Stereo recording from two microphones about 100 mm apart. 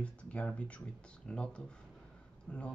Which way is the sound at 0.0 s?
10° left (ahead or behind).